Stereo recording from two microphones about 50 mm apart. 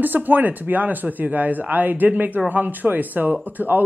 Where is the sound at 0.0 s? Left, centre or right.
Right.